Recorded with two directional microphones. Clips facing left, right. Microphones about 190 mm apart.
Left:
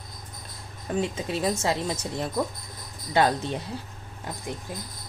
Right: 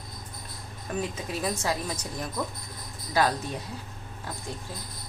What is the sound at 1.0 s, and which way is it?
Speech, 25° left (ahead or behind).